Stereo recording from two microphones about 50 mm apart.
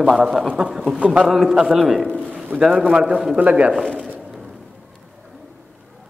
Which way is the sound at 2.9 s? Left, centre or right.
Right.